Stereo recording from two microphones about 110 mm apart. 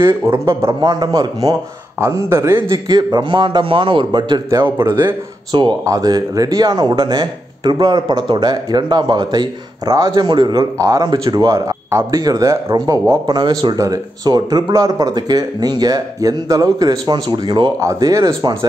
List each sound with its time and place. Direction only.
0.3 s speech: 25° right (ahead or behind)
0.7 s speech: 40° right (ahead or behind); by 2.6 s 25° right (ahead or behind)
2.7 s a man's voice: 35° right (ahead or behind)
4.6 s speech: 20° right (ahead or behind)
5.5 s speech: 40° right (ahead or behind)
17.7 s speech: 30° right (ahead or behind)